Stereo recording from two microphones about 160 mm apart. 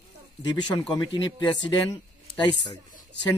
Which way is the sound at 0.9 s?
25° left (ahead or behind).